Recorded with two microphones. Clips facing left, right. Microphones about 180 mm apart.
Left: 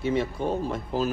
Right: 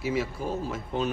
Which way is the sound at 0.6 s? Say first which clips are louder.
Left 3 dB; centre (ahead or behind).